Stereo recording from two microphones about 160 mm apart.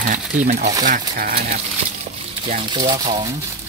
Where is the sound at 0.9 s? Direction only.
65° right (ahead or behind).